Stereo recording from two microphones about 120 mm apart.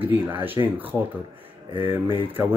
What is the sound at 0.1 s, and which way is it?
Speech, 15° right (ahead or behind).